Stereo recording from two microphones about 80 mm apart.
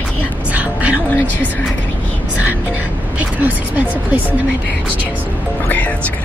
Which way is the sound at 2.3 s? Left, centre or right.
Right.